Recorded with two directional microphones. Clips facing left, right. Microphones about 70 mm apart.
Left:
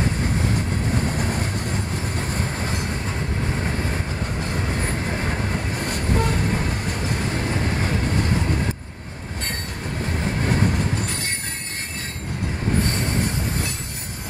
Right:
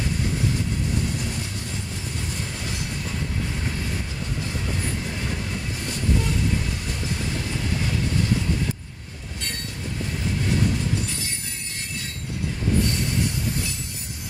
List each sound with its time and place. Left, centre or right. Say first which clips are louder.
0.0 s train: left 3 dB; left
10.0 s train: left 3 dB; left
12.8 s train: left 2 dB; left